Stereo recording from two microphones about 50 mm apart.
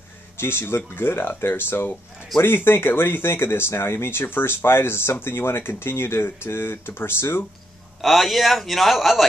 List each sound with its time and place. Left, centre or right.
0.4 s speech: left
8.0 s a man's voice: centre